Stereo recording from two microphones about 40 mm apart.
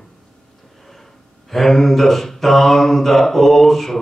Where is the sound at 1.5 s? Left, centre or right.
Centre.